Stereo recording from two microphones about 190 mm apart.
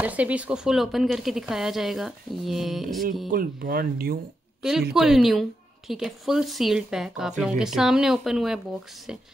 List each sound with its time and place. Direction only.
0.0 s a woman's voice: 10° right (ahead or behind)
3.3 s speech: 50° right (ahead or behind)
4.6 s a woman's voice: centre (ahead or behind)